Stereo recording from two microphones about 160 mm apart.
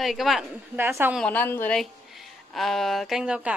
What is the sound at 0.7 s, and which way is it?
Speech, 15° right (ahead or behind).